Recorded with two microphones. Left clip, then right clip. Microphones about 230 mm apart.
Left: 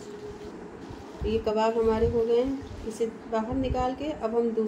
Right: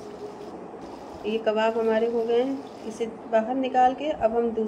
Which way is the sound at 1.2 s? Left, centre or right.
Centre.